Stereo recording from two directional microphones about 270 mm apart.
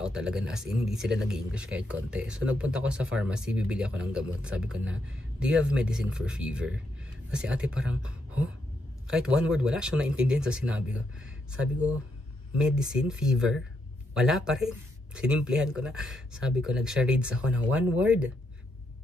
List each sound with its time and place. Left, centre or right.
0.0 s speech: centre
1.0 s speech: right
1.3 s speech: centre
12.5 s speech: centre